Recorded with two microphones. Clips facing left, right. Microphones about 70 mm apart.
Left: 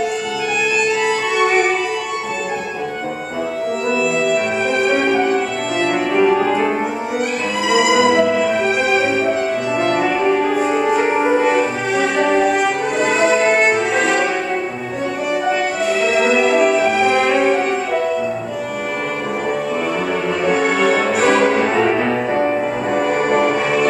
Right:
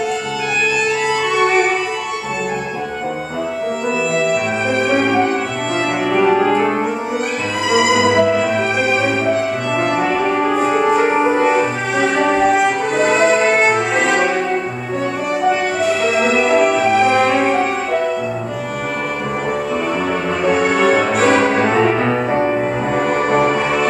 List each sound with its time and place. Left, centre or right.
4.8 s violin: centre
6.2 s music: centre
7.7 s music: centre
9.8 s music: centre
10.6 s music: right
10.9 s music: centre
13.2 s violin: centre
16.2 s music: centre
20.4 s music: centre
22.1 s music: centre
23.5 s music: centre